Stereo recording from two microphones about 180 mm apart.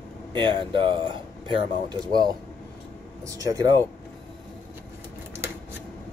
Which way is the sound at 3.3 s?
20° right (ahead or behind).